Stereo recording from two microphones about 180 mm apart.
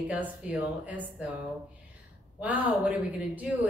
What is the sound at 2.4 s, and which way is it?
A woman's voice, 10° right (ahead or behind).